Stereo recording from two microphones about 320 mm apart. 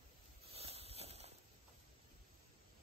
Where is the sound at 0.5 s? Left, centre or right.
Centre.